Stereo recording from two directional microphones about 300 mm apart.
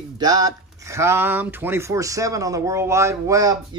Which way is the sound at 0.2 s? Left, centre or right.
Centre.